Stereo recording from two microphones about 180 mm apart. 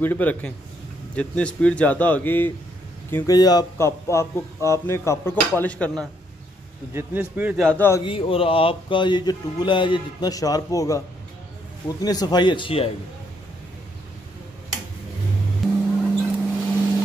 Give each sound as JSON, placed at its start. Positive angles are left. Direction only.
{"t": 0.0, "sound": "speech", "side_deg": 10}
{"t": 6.9, "sound": "speech", "side_deg": -10}
{"t": 7.5, "sound": "speech", "side_deg": 5}
{"t": 8.0, "sound": "speech", "side_deg": 30}
{"t": 12.0, "sound": "speech", "side_deg": 20}
{"t": 16.0, "sound": "vehicle", "side_deg": 0}